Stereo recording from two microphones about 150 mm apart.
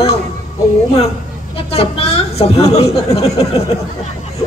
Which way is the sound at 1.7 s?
40° left (ahead or behind).